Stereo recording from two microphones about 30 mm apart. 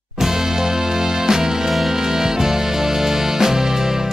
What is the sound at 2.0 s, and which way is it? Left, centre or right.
Music, centre.